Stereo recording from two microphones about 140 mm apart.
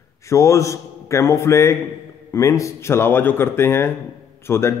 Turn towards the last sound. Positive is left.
turn(degrees=20)  # may be behind; listen again after turning